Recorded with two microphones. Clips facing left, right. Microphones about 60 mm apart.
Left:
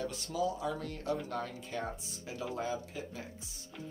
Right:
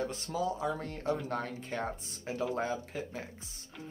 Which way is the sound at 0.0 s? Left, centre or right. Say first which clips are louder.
Right 1 dB; right.